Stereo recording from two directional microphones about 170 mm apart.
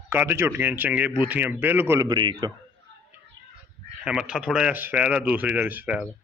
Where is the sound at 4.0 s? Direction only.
5° right (ahead or behind).